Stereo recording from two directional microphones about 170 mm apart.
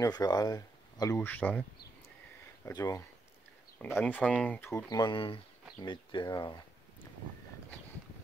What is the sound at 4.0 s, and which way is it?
Speech, 10° left (ahead or behind).